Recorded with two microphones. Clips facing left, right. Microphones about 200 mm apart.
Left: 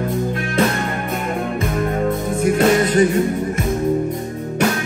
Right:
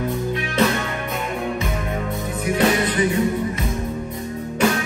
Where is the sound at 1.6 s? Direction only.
50° left (ahead or behind).